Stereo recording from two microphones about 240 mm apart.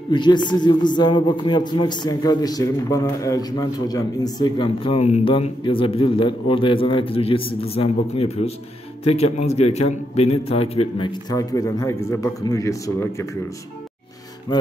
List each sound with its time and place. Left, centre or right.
0.1 s a man's voice: centre